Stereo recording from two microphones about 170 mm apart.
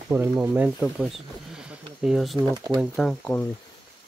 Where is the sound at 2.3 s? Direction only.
25° right (ahead or behind).